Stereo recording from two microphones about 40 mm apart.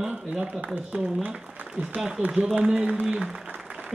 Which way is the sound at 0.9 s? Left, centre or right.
Right.